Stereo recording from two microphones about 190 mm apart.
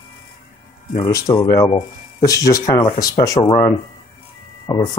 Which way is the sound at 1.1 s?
20° left (ahead or behind).